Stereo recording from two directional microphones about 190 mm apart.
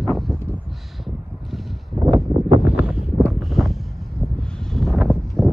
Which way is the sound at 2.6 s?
5° right (ahead or behind).